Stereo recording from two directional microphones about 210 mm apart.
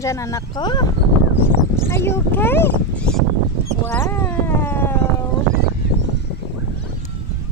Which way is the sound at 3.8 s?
10° left (ahead or behind).